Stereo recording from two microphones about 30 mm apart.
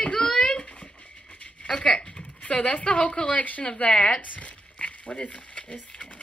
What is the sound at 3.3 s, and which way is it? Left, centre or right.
Speech, left.